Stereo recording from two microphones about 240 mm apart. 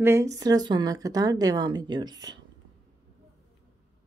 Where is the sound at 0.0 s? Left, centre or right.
Centre.